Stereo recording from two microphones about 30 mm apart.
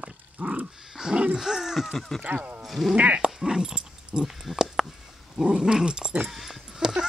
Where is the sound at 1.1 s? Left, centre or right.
Right.